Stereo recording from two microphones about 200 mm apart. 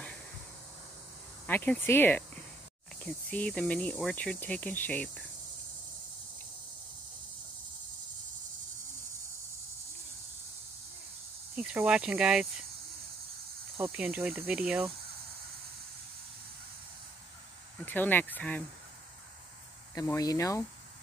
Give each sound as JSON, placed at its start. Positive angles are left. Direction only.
{"t": 1.4, "sound": "speech", "side_deg": 10}
{"t": 11.5, "sound": "speech", "side_deg": -5}
{"t": 13.7, "sound": "cricket", "side_deg": -10}
{"t": 17.7, "sound": "speech", "side_deg": 10}
{"t": 19.9, "sound": "speech", "side_deg": 15}